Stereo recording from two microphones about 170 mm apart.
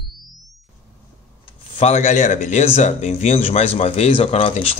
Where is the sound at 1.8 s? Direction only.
40° left (ahead or behind).